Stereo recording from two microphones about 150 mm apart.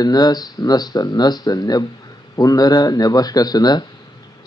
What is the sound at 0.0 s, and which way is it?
Speech, 25° left (ahead or behind).